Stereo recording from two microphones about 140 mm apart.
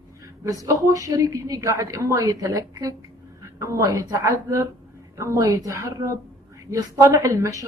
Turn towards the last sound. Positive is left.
turn(degrees=-20)  # may be behind; listen again after turning